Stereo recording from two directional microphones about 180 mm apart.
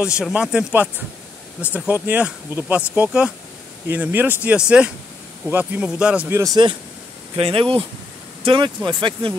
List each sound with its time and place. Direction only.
0.0 s speech: 5° right (ahead or behind); by 6.7 s 20° right (ahead or behind)
7.3 s speech: 30° right (ahead or behind)